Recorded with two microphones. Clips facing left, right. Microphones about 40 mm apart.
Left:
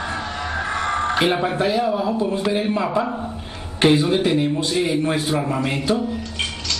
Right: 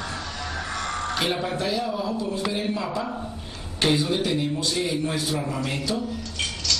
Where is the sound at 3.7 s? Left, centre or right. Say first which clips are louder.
Left 6 dB; left.